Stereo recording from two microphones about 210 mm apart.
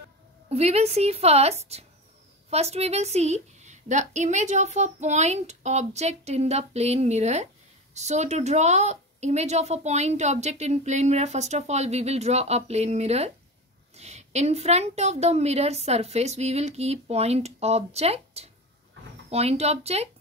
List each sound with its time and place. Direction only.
0.5 s speech: 30° right (ahead or behind)